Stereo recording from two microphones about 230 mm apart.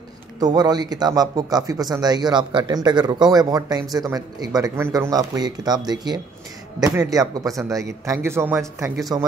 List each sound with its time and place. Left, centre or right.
0.4 s speech: centre